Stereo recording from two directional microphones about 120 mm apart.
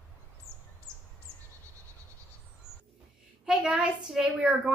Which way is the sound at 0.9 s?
25° right (ahead or behind).